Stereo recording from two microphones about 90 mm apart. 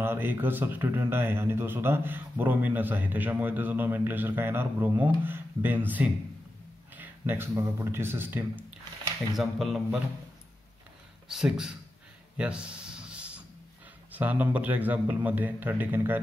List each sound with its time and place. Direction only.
0.0 s a man's voice: 25° right (ahead or behind)
9.4 s speech: centre (ahead or behind)
11.2 s speech: 5° right (ahead or behind)
12.4 s a sound: 10° right (ahead or behind)
14.1 s a man's voice: 20° right (ahead or behind)